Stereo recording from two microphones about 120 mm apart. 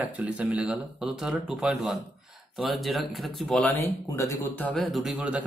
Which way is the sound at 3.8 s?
25° left (ahead or behind).